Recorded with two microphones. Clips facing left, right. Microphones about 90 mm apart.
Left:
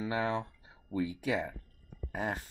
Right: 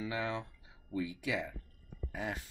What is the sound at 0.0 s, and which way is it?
Speech, 35° left (ahead or behind).